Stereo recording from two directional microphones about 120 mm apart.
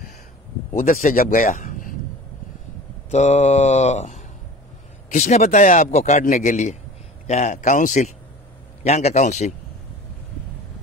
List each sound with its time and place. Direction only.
1.0 s speech: 90° left
3.1 s mantra: 70° left (ahead or behind)
5.1 s a man's voice: 80° left
7.2 s a man's voice: 70° left (ahead or behind); by 8.1 s 90° left
8.8 s mantra: 65° left (ahead or behind)